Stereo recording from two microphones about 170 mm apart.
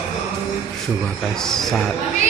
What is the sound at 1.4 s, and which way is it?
Speech, centre (ahead or behind).